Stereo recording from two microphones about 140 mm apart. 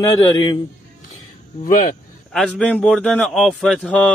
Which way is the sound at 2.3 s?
5° left (ahead or behind).